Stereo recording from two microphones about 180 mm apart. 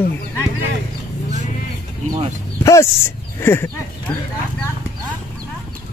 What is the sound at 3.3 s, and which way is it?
Speech, 15° left (ahead or behind).